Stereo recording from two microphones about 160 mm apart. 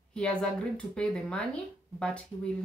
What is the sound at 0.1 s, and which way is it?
A woman's voice, 5° left (ahead or behind).